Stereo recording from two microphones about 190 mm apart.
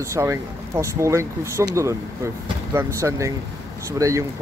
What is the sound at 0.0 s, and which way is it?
Speech, 15° right (ahead or behind).